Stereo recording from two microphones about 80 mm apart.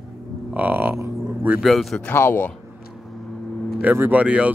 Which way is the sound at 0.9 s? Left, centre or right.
Right.